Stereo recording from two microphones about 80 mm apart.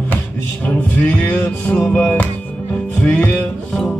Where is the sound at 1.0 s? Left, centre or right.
Left.